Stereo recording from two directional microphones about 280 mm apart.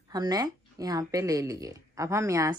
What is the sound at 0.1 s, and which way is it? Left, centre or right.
A woman's voice, centre.